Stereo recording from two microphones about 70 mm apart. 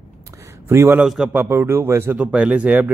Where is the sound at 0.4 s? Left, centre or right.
Right.